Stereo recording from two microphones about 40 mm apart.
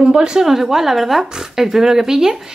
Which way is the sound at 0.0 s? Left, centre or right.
Right.